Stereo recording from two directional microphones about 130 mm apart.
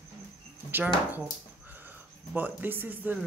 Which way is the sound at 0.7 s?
15° right (ahead or behind).